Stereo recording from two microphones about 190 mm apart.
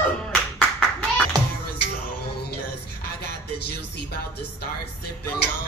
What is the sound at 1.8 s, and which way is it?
Music, 55° left (ahead or behind).